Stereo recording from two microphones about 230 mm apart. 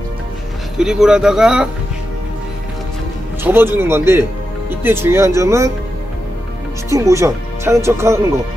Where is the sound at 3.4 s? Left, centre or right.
Centre.